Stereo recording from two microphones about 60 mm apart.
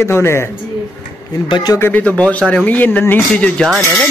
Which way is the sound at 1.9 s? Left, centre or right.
Left.